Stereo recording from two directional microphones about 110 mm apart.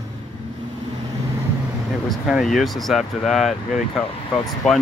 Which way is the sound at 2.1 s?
Centre (ahead or behind).